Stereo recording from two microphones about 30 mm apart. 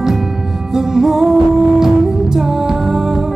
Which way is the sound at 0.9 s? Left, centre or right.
Centre.